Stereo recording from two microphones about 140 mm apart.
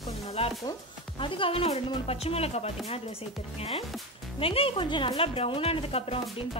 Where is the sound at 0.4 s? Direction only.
45° left (ahead or behind).